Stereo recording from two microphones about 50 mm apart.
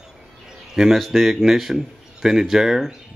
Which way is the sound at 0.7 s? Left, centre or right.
Centre.